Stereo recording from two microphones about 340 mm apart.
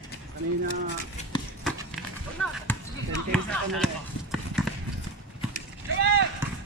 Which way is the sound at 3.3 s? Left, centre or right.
Centre.